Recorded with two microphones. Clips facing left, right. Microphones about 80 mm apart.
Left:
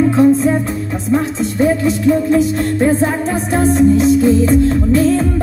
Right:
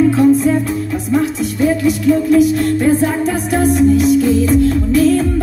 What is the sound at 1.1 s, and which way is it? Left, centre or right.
Speech, left.